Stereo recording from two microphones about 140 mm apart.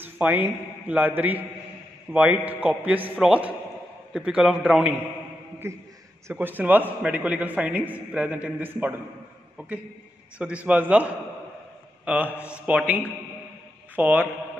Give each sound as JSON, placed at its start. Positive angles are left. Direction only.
{"t": 0.0, "sound": "a man's voice", "side_deg": -15}
{"t": 5.6, "sound": "a man's voice", "side_deg": -20}
{"t": 12.3, "sound": "a man's voice", "side_deg": 15}
{"t": 12.6, "sound": "a man's voice", "side_deg": -10}